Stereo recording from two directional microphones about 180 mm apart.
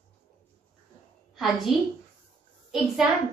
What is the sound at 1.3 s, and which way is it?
Speech, centre (ahead or behind).